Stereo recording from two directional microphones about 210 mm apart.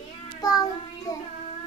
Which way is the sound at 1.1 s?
15° left (ahead or behind).